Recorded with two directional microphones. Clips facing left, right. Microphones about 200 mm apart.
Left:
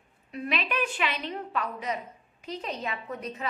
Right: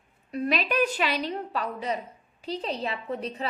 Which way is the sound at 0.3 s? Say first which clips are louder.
Right 5 dB; 40° right (ahead or behind).